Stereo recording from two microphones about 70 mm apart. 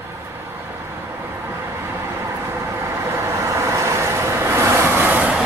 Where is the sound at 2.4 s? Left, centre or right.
Right.